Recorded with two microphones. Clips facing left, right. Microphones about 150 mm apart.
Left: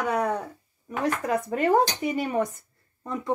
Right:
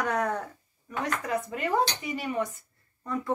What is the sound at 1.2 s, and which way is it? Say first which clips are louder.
Dishes: left 8 dB; 50° left (ahead or behind).